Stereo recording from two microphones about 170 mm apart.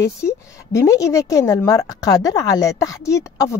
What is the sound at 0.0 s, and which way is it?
A woman's voice, 15° left (ahead or behind).